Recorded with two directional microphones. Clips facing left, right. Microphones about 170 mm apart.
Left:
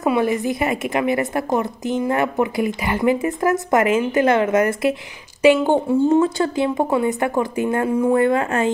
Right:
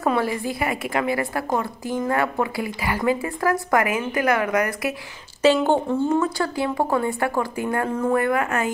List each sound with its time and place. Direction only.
0.0 s a woman's voice: 15° left (ahead or behind)
5.4 s speech: 15° left (ahead or behind)
6.1 s a woman's voice: 25° left (ahead or behind)